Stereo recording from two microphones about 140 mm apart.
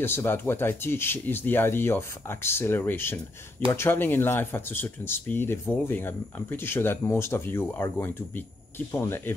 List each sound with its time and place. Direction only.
0.0 s speech: 15° left (ahead or behind)